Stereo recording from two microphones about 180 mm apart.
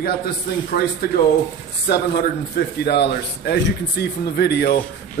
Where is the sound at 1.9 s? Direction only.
60° left (ahead or behind).